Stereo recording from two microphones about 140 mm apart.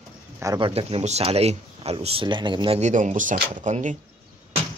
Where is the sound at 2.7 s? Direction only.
55° right (ahead or behind).